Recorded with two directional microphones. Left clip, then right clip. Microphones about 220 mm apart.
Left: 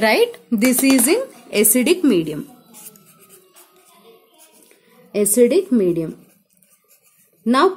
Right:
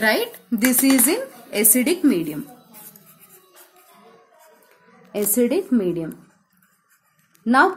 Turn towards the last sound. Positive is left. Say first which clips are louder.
# even
turn(degrees=45)  # may be behind; listen again after turning